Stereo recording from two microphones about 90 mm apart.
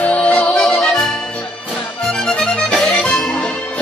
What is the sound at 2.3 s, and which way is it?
Accordion, 10° left (ahead or behind).